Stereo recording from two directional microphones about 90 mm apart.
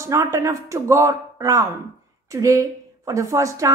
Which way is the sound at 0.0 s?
35° right (ahead or behind).